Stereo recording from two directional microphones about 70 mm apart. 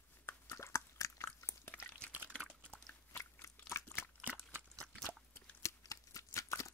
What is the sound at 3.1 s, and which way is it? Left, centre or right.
Biting, left.